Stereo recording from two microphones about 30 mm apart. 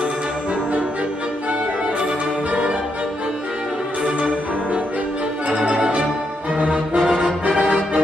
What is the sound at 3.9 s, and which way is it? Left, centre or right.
Music, right.